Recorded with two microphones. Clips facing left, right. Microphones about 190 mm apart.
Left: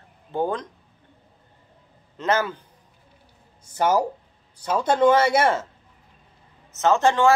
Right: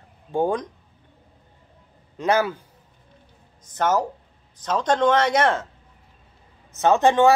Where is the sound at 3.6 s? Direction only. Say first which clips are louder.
Left 1 dB; 10° left (ahead or behind).